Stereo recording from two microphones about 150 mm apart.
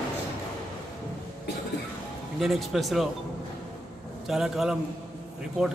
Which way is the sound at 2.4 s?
Centre (ahead or behind).